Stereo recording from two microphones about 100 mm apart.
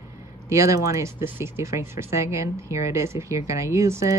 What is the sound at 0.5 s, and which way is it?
Speech, 30° right (ahead or behind).